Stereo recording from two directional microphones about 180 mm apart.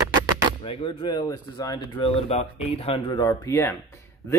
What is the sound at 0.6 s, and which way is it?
Speech, 30° left (ahead or behind).